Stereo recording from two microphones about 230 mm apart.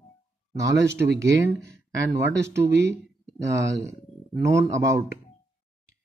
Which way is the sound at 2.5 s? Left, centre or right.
Right.